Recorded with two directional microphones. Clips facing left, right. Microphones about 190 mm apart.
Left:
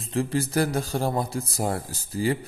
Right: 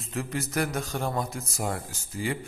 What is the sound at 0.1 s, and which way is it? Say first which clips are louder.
A man's voice: left 6 dB; 30° left (ahead or behind).